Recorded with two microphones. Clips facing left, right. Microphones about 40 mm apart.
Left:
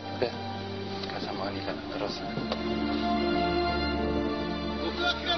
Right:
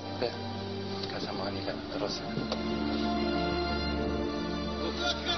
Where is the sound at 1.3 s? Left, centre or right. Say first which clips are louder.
Left 1 dB; centre.